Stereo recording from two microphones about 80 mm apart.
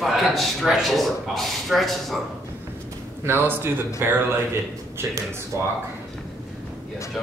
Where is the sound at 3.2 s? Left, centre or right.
Right.